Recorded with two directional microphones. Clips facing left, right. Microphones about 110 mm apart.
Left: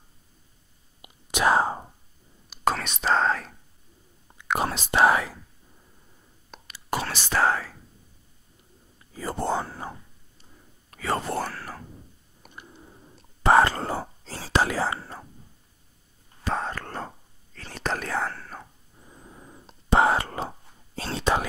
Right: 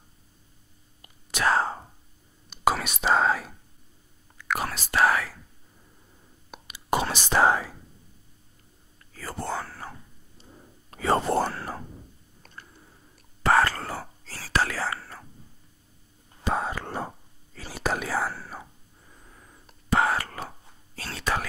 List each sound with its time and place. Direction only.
1.0 s whispering: 15° left (ahead or behind)
2.5 s whispering: 5° right (ahead or behind)
4.4 s whispering: 25° left (ahead or behind)
6.5 s whispering: 20° right (ahead or behind)
9.1 s whispering: 20° left (ahead or behind)
10.3 s whispering: 30° right (ahead or behind)
12.4 s whispering: 20° left (ahead or behind)
16.4 s whispering: 10° right (ahead or behind)
18.9 s whispering: 20° left (ahead or behind)